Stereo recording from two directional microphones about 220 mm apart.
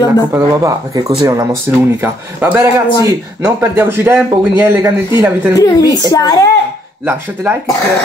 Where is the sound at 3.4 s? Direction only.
10° right (ahead or behind).